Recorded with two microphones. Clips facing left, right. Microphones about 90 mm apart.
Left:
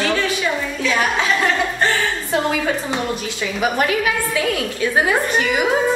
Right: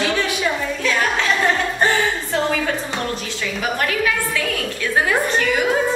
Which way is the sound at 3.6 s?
15° left (ahead or behind).